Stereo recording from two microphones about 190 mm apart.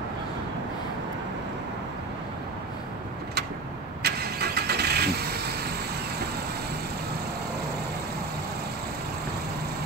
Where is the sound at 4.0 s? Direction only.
55° right (ahead or behind).